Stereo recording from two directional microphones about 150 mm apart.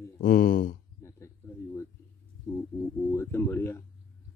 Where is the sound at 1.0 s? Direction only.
20° left (ahead or behind).